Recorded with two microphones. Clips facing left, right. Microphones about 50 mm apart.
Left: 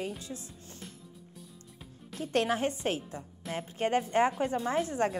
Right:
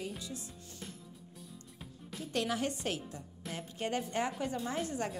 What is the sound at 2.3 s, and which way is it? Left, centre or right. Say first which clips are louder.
A woman's voice: left 5 dB; left.